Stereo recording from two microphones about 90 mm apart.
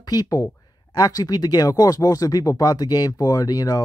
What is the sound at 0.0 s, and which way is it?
Speech, 45° left (ahead or behind).